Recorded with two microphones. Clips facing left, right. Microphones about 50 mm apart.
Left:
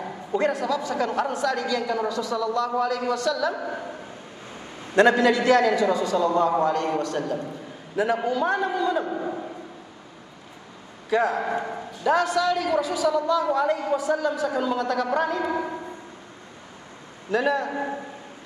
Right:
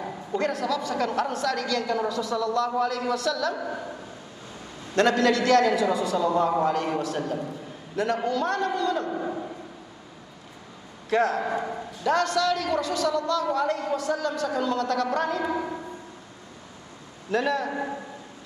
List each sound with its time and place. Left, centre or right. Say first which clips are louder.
0.3 s a woman's voice: left 3 dB; centre
3.4 s a man's voice: left 2 dB; centre
4.9 s a man's voice: left 3 dB; centre
5.7 s a woman's voice: left 2 dB; centre
5.9 s a man's voice: left 2 dB; centre
7.4 s a man's voice: even; centre
9.2 s a sound: left 1 dB; centre
11.1 s a man's voice: left 1 dB; centre
17.3 s a man's voice: left 2 dB; centre